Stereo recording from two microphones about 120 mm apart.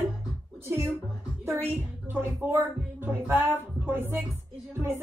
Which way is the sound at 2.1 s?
20° right (ahead or behind).